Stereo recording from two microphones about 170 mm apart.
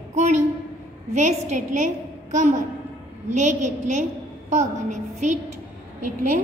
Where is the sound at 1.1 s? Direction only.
40° right (ahead or behind).